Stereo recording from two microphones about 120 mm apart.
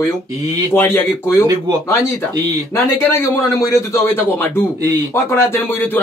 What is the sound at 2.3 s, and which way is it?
Speech, 30° right (ahead or behind).